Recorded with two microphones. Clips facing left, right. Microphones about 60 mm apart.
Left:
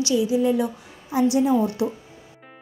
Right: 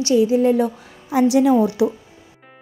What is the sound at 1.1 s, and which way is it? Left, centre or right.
Speech, right.